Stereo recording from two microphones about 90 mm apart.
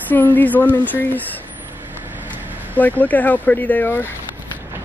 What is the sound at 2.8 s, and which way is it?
Speech, 20° left (ahead or behind).